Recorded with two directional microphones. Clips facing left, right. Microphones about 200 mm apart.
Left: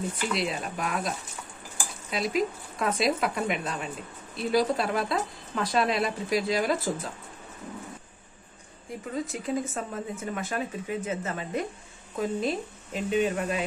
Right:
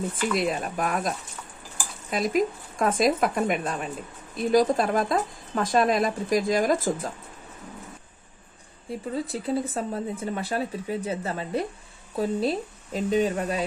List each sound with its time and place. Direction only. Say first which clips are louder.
0.3 s speech: right 4 dB; 50° right (ahead or behind)
9.1 s speech: right 2 dB; 35° right (ahead or behind)